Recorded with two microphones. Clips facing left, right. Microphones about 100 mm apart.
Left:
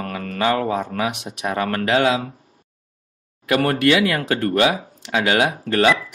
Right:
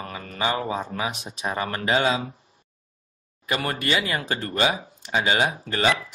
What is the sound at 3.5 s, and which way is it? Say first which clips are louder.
Speech: left 9 dB; 60° left (ahead or behind).